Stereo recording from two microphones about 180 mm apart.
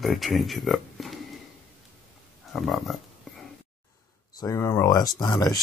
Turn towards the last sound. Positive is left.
turn(degrees=20)  # may be behind; listen again after turning